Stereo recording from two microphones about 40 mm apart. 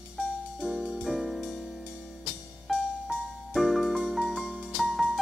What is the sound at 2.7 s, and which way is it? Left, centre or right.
Music, centre.